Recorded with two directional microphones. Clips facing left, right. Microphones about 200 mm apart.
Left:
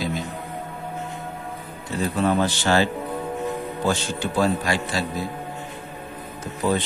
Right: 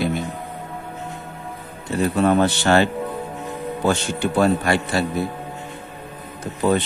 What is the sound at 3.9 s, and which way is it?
A man's voice, 60° right (ahead or behind).